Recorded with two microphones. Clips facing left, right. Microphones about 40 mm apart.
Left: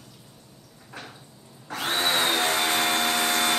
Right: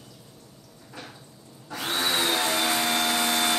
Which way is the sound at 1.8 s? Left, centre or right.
Left.